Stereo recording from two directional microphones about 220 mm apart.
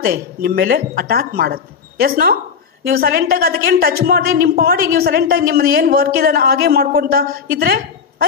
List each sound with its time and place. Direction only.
0.0 s a woman's voice: 45° right (ahead or behind)